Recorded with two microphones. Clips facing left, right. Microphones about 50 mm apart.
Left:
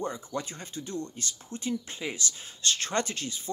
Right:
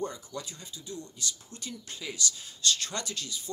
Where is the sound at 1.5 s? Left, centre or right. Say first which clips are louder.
Left 9 dB; left.